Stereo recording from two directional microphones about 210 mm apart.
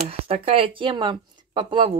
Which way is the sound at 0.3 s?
25° right (ahead or behind).